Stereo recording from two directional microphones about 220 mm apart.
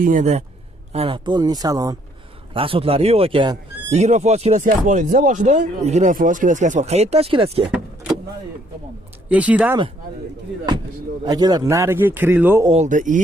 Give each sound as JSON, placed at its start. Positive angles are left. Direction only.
{"t": 0.0, "sound": "speech", "side_deg": -35}
{"t": 9.3, "sound": "a man's voice", "side_deg": -5}
{"t": 11.2, "sound": "a man's voice", "side_deg": -20}
{"t": 12.6, "sound": "speech", "side_deg": -30}